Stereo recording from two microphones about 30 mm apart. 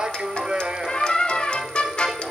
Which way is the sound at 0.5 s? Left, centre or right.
Left.